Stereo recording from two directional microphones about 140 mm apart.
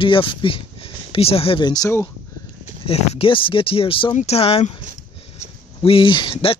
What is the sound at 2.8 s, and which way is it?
Speech, 45° left (ahead or behind).